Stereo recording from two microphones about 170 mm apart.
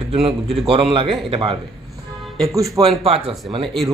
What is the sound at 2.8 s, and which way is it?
Speech, 35° right (ahead or behind).